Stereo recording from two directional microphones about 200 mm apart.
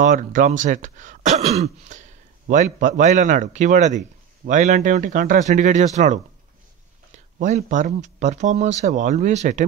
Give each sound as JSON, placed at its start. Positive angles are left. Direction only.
{"t": 0.0, "sound": "speech", "side_deg": -40}
{"t": 7.3, "sound": "speech", "side_deg": -40}